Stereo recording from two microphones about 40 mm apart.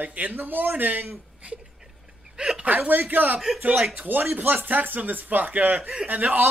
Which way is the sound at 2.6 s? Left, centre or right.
Right.